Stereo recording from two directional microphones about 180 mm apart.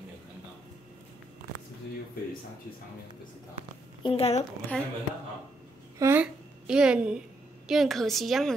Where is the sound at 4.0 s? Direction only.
30° left (ahead or behind).